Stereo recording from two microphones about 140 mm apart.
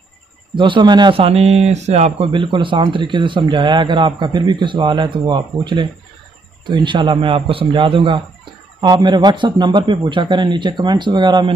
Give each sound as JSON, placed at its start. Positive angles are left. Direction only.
{"t": 0.6, "sound": "speech", "side_deg": -35}
{"t": 2.3, "sound": "a man's voice", "side_deg": -35}